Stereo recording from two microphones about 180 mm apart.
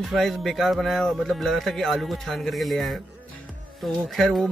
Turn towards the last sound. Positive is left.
turn(degrees=0)  # may be behind; listen again after turning